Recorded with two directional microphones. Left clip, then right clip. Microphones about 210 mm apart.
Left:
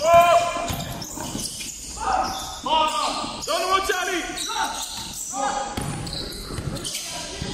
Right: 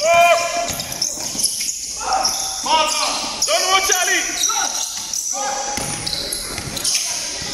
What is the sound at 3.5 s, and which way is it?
Basketball bounce, 50° left (ahead or behind).